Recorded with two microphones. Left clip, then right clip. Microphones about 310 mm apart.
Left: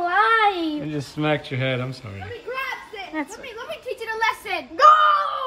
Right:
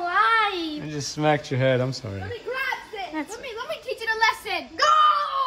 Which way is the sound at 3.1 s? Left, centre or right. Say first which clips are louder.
Left 5 dB; centre.